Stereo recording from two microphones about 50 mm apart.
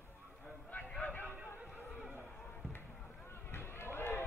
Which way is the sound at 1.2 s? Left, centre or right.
Right.